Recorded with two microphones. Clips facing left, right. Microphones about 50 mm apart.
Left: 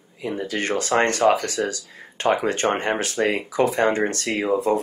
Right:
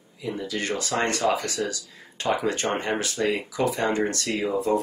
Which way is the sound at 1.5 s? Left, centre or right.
Left.